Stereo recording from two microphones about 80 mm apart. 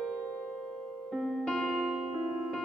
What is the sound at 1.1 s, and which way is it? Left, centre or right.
Music, centre.